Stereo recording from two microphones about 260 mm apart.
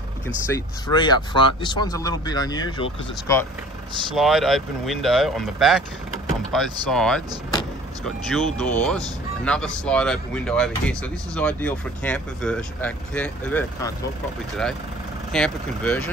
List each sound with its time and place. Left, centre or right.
0.5 s speech: centre
4.1 s speech: centre
15.3 s speech: centre